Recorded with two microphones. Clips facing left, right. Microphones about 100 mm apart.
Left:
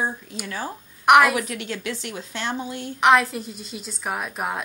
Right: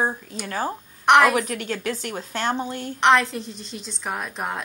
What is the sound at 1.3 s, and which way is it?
A woman's voice, 40° right (ahead or behind).